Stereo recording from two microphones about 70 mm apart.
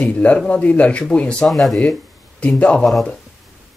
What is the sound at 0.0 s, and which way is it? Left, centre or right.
Speech, centre.